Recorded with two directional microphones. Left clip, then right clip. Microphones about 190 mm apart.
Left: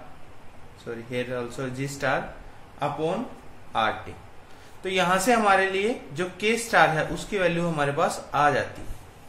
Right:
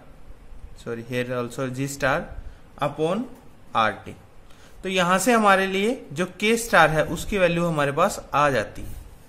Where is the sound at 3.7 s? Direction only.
45° right (ahead or behind).